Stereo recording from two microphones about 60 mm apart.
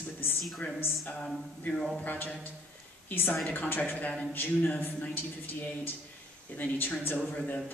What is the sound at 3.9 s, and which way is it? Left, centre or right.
Speech, left.